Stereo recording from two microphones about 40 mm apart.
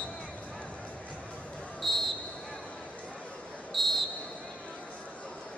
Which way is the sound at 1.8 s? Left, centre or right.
Centre.